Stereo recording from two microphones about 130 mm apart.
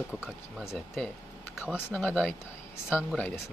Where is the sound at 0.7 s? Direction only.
5° left (ahead or behind).